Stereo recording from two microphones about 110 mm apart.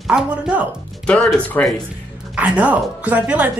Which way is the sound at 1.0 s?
10° left (ahead or behind).